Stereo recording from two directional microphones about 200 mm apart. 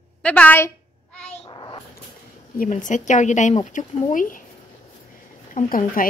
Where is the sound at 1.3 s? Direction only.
25° left (ahead or behind).